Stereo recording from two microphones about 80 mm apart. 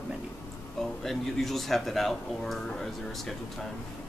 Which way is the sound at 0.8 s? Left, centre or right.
Centre.